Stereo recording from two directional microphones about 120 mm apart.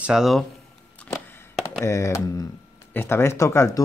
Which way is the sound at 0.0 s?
5° right (ahead or behind).